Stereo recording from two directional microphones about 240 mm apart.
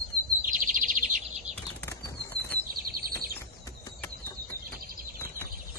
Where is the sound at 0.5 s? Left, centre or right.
Right.